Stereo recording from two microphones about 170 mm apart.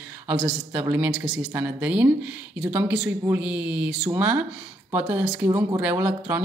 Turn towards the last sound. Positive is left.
turn(degrees=-10)  # may be behind; listen again after turning